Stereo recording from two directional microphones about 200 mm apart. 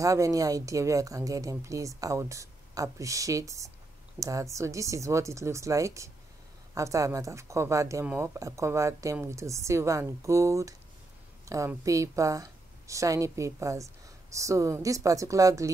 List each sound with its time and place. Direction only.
0.0 s speech: 15° right (ahead or behind)